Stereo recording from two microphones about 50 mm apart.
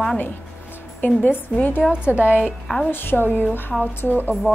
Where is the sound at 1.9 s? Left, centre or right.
Right.